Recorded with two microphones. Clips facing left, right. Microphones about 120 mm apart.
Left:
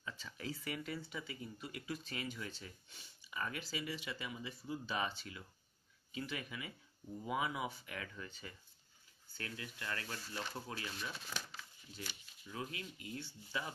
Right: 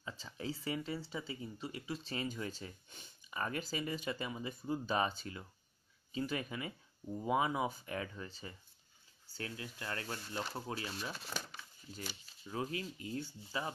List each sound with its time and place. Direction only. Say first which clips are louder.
0.0 s speech: right 3 dB; 30° right (ahead or behind)
11.9 s speech: right 4 dB; 45° right (ahead or behind)